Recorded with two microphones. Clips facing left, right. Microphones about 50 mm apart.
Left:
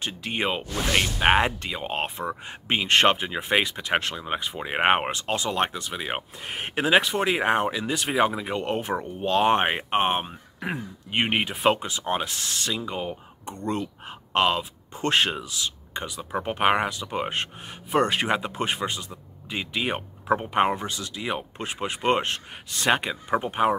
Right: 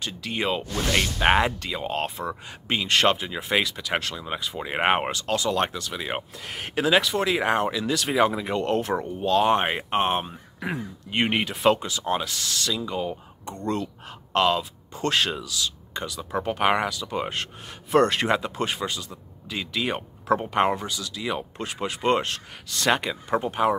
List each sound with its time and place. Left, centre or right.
0.0 s speech: left
0.7 s speech: centre
0.9 s speech: centre
9.2 s speech: left
17.9 s speech: centre